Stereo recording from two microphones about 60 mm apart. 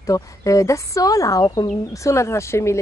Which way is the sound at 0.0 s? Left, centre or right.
Left.